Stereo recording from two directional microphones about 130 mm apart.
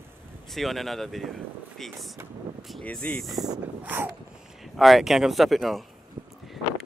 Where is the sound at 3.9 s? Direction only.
15° right (ahead or behind).